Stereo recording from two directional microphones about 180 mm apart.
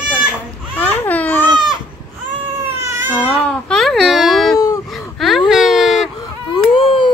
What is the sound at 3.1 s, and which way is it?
Baby cry, 5° left (ahead or behind).